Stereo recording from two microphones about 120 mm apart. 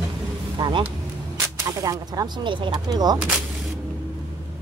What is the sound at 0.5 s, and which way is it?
Speech, 45° right (ahead or behind).